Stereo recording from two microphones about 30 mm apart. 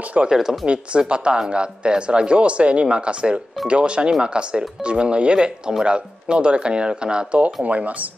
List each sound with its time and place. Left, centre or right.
0.3 s speech: centre
0.7 s speech: right
7.6 s speech: right